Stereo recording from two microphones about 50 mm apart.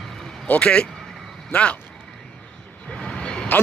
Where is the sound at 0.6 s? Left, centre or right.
Left.